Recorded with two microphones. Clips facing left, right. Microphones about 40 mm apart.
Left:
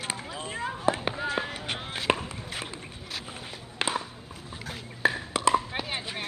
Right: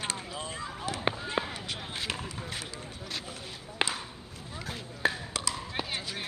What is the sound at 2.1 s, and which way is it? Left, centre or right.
Chop, left.